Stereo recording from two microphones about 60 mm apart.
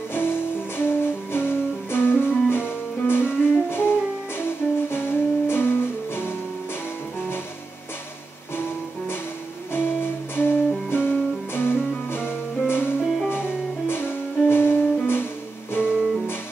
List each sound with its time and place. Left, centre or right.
0.1 s music: left
9.7 s music: left